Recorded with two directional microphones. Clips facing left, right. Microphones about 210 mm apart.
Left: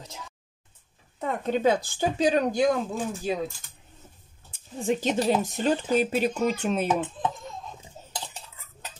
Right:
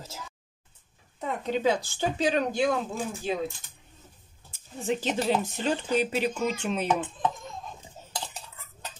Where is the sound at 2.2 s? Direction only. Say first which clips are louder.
Left 3 dB; 40° left (ahead or behind).